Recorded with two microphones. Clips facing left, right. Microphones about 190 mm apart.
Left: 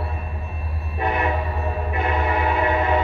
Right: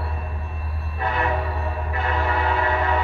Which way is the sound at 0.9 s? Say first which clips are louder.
Left 2 dB; 20° left (ahead or behind).